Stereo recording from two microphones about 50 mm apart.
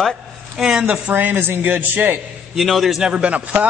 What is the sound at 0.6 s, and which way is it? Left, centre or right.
Speech, centre.